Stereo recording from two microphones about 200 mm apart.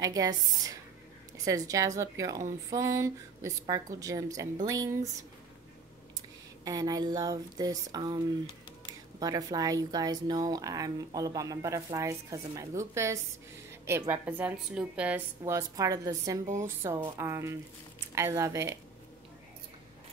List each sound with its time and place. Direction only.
0.0 s speech: 20° right (ahead or behind)
6.6 s speech: 20° right (ahead or behind)
9.2 s speech: 20° right (ahead or behind)